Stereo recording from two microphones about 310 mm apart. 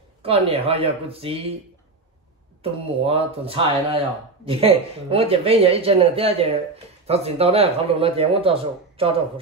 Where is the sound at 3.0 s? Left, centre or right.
Centre.